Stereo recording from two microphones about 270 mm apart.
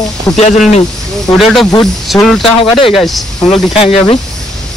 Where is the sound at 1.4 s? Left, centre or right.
Centre.